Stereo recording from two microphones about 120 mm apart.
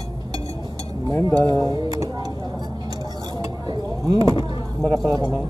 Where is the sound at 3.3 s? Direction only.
35° right (ahead or behind).